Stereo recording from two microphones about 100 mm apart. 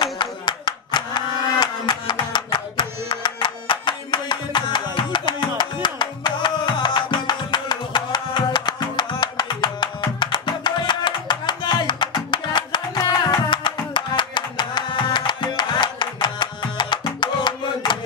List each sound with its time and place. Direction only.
0.0 s clapping: 50° left (ahead or behind)
13.3 s music: 50° left (ahead or behind)